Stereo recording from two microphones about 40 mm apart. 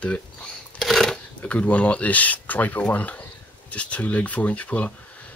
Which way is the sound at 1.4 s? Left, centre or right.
Left.